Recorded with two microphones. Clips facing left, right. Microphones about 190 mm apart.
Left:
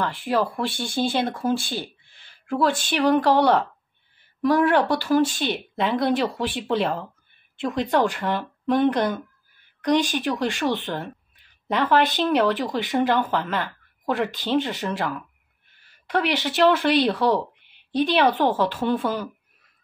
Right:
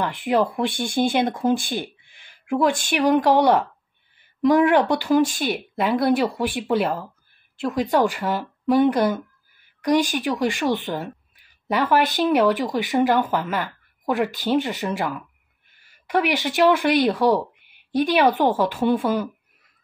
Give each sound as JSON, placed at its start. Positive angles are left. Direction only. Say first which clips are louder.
{"t": 0.0, "sound": "speech", "louder": "right 3 dB", "side_deg": -20}